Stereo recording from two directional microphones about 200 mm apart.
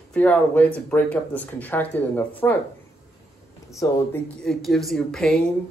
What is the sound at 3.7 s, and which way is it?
Speech, 15° left (ahead or behind).